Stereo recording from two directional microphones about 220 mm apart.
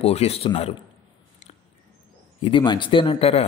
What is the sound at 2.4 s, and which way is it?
Speech, 25° left (ahead or behind).